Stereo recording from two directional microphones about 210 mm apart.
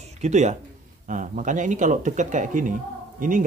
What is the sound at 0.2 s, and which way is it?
Speech, 35° right (ahead or behind).